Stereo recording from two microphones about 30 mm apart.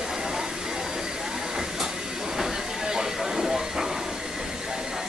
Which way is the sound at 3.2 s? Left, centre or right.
Centre.